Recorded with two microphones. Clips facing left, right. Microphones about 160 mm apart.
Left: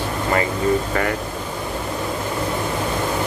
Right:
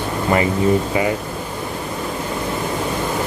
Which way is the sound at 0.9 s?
10° right (ahead or behind).